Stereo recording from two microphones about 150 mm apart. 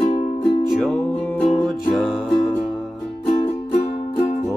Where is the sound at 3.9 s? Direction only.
45° left (ahead or behind).